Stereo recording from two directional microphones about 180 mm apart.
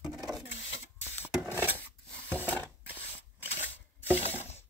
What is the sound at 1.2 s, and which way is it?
Wood, 10° right (ahead or behind).